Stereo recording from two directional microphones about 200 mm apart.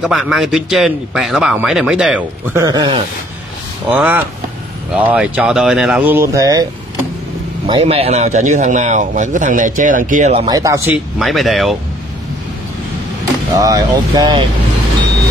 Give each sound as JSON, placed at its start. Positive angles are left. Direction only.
{"t": 0.0, "sound": "a man's voice", "side_deg": 0}
{"t": 3.9, "sound": "speech", "side_deg": -10}
{"t": 7.6, "sound": "speech", "side_deg": -30}
{"t": 10.3, "sound": "speech", "side_deg": -25}
{"t": 10.6, "sound": "speech", "side_deg": -15}
{"t": 11.1, "sound": "a man's voice", "side_deg": 0}
{"t": 13.6, "sound": "speech", "side_deg": -20}